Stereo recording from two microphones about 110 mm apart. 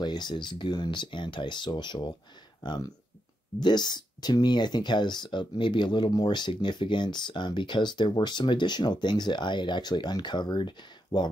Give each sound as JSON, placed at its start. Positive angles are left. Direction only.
{"t": 0.0, "sound": "speech", "side_deg": 40}